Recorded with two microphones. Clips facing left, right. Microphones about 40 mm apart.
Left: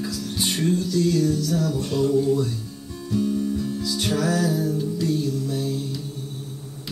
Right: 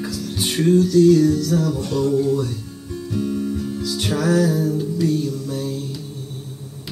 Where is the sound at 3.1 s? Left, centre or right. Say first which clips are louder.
Left 1 dB; centre.